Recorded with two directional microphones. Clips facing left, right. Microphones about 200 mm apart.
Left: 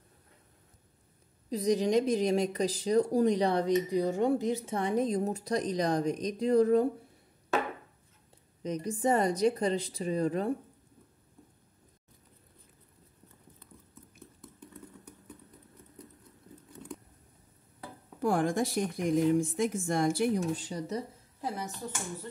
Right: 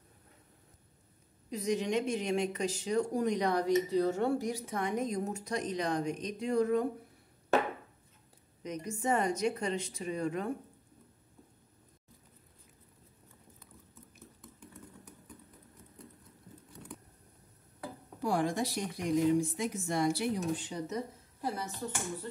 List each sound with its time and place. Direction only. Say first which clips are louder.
1.5 s speech: left 5 dB; 35° left (ahead or behind)
8.6 s speech: left 4 dB; 35° left (ahead or behind)
18.2 s speech: left 3 dB; 50° left (ahead or behind)